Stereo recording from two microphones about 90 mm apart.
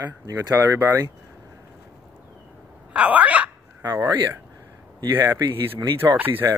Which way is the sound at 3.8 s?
40° right (ahead or behind).